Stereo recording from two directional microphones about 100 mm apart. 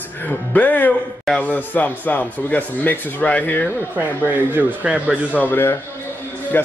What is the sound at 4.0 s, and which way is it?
Speech, 20° right (ahead or behind).